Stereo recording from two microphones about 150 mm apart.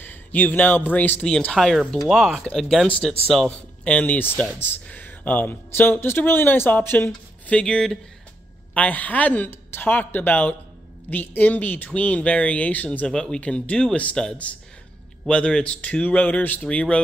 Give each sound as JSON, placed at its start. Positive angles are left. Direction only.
{"t": 0.0, "sound": "speech", "side_deg": 10}